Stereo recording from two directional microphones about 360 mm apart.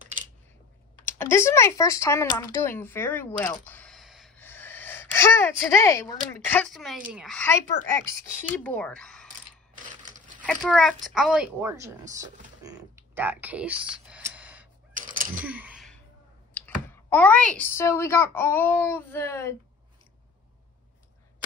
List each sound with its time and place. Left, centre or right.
0.9 s speech: centre
10.4 s speech: centre
12.6 s a sound: centre
15.0 s a sound: right
15.3 s gasp: centre
16.5 s speech: centre